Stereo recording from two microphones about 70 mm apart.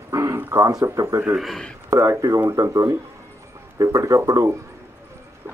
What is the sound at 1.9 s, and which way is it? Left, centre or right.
Speech, right.